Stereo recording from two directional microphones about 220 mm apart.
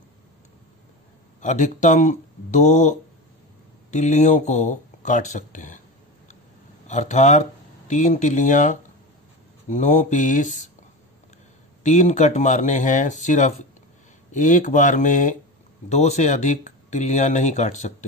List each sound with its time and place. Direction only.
1.4 s speech: 35° left (ahead or behind)
6.9 s speech: 30° left (ahead or behind)
11.8 s speech: 30° left (ahead or behind)